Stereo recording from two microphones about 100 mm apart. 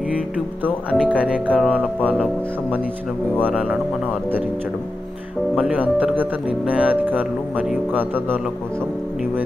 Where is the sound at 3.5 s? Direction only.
10° right (ahead or behind).